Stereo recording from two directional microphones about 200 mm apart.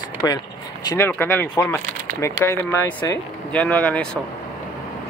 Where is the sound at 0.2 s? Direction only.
15° left (ahead or behind).